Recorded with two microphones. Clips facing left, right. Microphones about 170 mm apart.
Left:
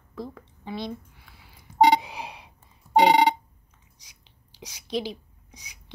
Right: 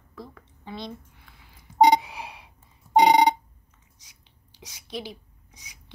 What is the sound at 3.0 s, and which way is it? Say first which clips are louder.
Telephone: right 1 dB; 15° right (ahead or behind).